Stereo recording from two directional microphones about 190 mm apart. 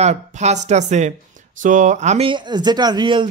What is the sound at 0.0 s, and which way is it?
Speech, 35° right (ahead or behind).